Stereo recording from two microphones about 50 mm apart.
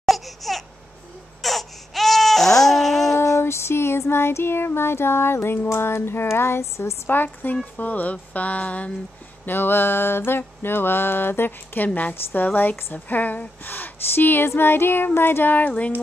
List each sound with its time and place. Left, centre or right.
0.0 s a sound: centre
1.4 s baby cry: centre
3.2 s female singing: left
4.1 s child singing: left
7.1 s a woman's voice: left
9.5 s mantra: left
12.1 s mantra: left
12.5 s a woman's voice: left
14.6 s mantra: left